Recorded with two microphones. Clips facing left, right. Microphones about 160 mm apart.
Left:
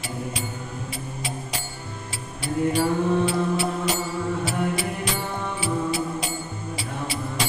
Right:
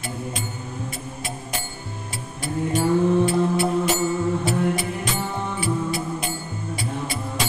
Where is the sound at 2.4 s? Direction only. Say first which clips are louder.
Left 1 dB; 50° right (ahead or behind).